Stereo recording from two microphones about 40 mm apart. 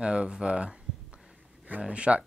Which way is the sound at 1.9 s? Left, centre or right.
Right.